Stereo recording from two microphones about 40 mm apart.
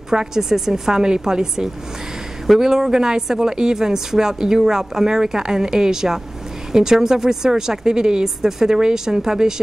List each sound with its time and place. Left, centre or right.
0.1 s a woman's voice: centre